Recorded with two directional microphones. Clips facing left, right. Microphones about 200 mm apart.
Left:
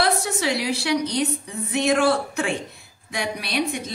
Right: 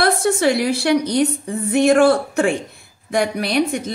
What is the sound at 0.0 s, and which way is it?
A woman's voice, 50° right (ahead or behind).